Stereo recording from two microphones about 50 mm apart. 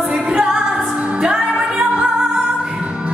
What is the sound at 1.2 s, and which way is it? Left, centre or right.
Music, right.